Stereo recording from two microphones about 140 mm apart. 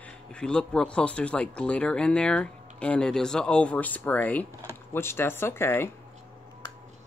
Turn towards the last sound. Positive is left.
turn(degrees=15)  # may be behind; listen again after turning